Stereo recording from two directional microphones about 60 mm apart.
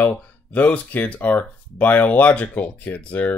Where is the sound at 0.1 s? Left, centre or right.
Left.